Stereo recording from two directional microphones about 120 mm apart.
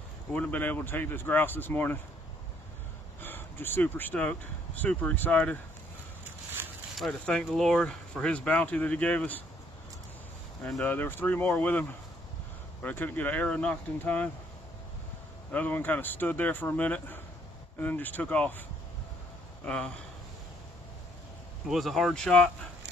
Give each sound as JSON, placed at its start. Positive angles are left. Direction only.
{"t": 0.3, "sound": "speech", "side_deg": 15}
{"t": 3.2, "sound": "speech", "side_deg": 15}
{"t": 7.0, "sound": "speech", "side_deg": 5}
{"t": 10.8, "sound": "speech", "side_deg": 15}
{"t": 12.8, "sound": "speech", "side_deg": 15}
{"t": 15.5, "sound": "speech", "side_deg": 15}
{"t": 19.6, "sound": "speech", "side_deg": 5}
{"t": 21.6, "sound": "speech", "side_deg": 0}